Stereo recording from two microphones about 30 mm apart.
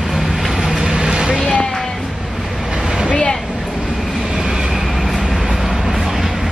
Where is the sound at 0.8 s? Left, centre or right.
Right.